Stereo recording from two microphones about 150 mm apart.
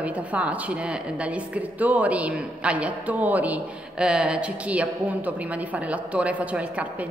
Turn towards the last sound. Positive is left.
turn(degrees=-10)  # may be behind; listen again after turning